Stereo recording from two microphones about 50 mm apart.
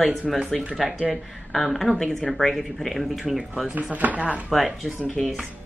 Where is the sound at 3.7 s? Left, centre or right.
Right.